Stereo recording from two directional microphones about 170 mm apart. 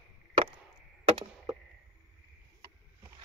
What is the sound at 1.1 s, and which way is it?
Chop, 30° right (ahead or behind).